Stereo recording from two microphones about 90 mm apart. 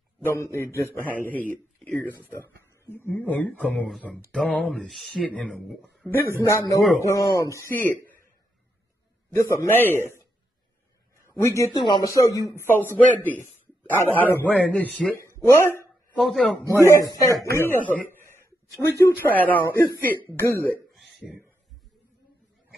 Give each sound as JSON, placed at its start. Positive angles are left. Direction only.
{"t": 0.2, "sound": "a man's voice", "side_deg": 30}
{"t": 4.6, "sound": "a man's voice", "side_deg": 0}
{"t": 6.0, "sound": "speech", "side_deg": 25}
{"t": 9.3, "sound": "speech", "side_deg": 35}
{"t": 11.3, "sound": "speech", "side_deg": 35}
{"t": 11.7, "sound": "speech", "side_deg": 55}
{"t": 12.4, "sound": "speech", "side_deg": 40}
{"t": 12.6, "sound": "a man's voice", "side_deg": 25}
{"t": 15.1, "sound": "speech", "side_deg": 30}
{"t": 16.2, "sound": "speech", "side_deg": 0}
{"t": 16.8, "sound": "speech", "side_deg": 35}
{"t": 18.2, "sound": "a sound", "side_deg": 30}
{"t": 19.2, "sound": "speech", "side_deg": 20}